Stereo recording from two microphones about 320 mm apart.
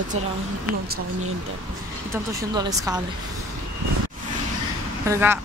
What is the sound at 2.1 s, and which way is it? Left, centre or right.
Speech, centre.